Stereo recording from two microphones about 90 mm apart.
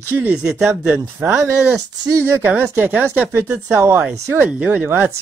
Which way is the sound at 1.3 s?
35° right (ahead or behind).